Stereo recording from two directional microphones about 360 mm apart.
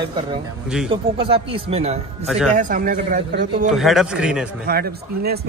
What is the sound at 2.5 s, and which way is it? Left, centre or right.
A man's voice, right.